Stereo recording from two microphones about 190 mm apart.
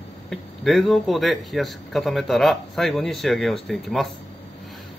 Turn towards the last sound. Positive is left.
turn(degrees=0)  # may be behind; listen again after turning